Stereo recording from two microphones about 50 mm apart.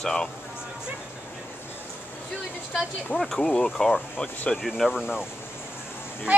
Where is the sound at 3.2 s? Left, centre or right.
Centre.